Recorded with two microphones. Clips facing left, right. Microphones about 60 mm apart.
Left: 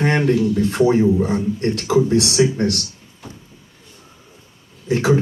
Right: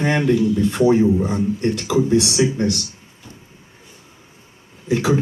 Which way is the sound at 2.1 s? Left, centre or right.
Left.